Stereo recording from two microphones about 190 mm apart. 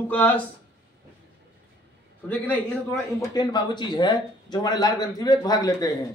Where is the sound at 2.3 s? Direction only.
10° left (ahead or behind).